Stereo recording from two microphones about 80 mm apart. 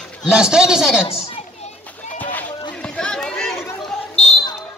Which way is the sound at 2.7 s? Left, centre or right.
Centre.